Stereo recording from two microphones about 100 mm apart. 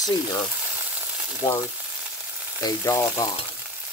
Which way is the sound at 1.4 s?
60° left (ahead or behind).